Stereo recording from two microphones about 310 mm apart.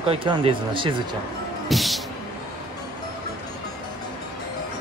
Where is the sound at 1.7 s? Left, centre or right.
Centre.